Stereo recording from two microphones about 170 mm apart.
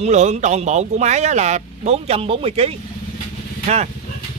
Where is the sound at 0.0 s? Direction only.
40° right (ahead or behind).